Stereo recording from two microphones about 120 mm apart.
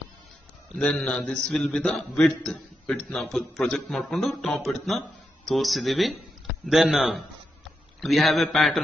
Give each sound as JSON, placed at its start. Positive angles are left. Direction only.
{"t": 0.7, "sound": "a man's voice", "side_deg": 5}